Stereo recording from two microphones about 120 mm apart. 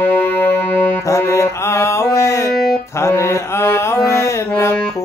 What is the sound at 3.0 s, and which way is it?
Mantra, 25° left (ahead or behind).